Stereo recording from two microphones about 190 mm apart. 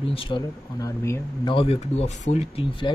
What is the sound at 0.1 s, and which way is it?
Speech, 25° left (ahead or behind).